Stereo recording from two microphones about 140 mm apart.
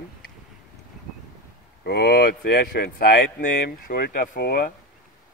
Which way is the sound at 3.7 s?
80° left.